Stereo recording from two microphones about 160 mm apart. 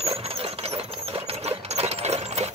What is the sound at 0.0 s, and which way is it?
Sewing machine, 40° right (ahead or behind).